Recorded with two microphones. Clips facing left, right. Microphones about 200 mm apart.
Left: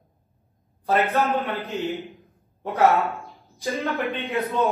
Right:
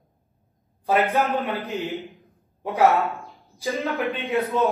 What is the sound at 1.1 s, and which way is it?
Speech, 15° right (ahead or behind).